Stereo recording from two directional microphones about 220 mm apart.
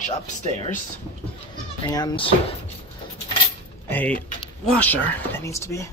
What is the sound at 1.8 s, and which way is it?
Speech, 20° left (ahead or behind).